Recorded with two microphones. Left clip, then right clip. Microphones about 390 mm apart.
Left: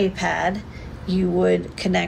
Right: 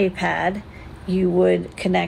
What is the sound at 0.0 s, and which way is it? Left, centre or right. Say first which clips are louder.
Speech: right 1 dB; centre.